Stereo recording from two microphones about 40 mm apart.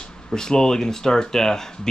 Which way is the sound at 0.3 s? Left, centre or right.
Centre.